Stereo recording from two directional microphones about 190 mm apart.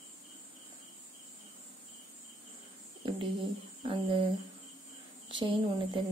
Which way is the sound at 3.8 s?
25° right (ahead or behind).